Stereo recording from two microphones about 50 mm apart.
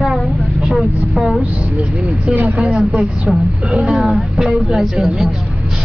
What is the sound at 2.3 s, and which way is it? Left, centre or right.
Speech, right.